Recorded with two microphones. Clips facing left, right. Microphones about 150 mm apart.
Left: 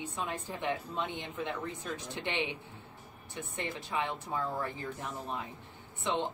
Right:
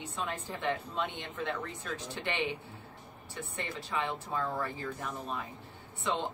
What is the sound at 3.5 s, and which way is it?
Speech, 20° left (ahead or behind).